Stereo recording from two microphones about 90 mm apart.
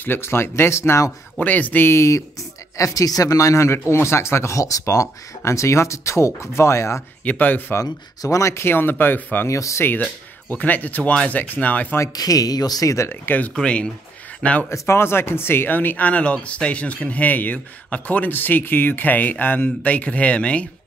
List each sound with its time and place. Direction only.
0.0 s speech: 25° left (ahead or behind)
1.4 s speech: 20° left (ahead or behind)
7.2 s speech: 20° left (ahead or behind)
7.8 s speech: 40° left (ahead or behind); by 9.5 s 20° left (ahead or behind)
9.5 s speech: 35° left (ahead or behind)
10.5 s speech: 20° left (ahead or behind)
12.2 s speech: 45° left (ahead or behind); by 14.7 s 15° left (ahead or behind)
14.7 s speech: 30° left (ahead or behind); by 20.6 s 15° left (ahead or behind)